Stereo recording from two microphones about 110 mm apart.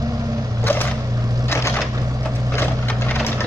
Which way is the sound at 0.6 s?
20° left (ahead or behind).